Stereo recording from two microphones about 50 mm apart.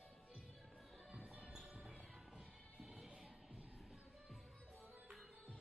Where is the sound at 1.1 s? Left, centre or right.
Right.